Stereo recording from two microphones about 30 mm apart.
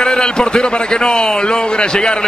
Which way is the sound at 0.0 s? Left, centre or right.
Left.